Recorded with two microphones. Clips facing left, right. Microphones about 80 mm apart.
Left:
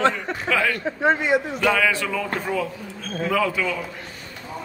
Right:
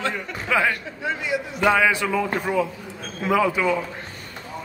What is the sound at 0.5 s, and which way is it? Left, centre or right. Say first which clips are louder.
Speech: right 2 dB; centre.